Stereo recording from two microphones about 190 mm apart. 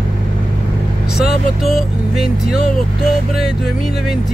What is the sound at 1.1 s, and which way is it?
Speech, centre (ahead or behind).